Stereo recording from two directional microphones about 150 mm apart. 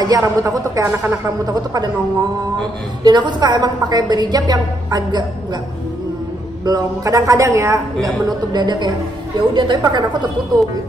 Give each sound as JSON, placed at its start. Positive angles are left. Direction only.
{"t": 0.0, "sound": "a woman's voice", "side_deg": -25}
{"t": 3.0, "sound": "a woman's voice", "side_deg": -30}
{"t": 6.6, "sound": "a woman's voice", "side_deg": -25}